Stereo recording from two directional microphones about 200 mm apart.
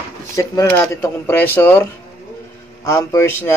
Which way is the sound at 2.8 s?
15° left (ahead or behind).